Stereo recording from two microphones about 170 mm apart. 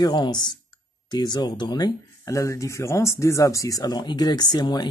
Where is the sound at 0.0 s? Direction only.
25° left (ahead or behind).